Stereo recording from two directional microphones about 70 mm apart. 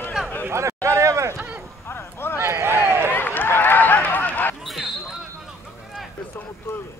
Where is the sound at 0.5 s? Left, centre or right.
Right.